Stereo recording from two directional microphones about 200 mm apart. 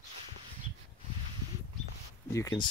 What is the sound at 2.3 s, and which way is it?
Speech, 15° left (ahead or behind).